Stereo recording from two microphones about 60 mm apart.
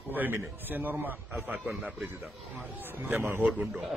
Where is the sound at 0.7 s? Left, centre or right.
Right.